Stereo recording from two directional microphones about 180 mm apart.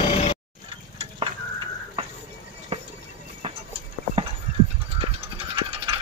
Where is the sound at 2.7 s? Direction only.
35° right (ahead or behind).